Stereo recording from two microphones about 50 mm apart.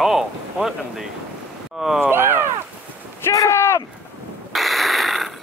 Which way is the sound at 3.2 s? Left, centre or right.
Left.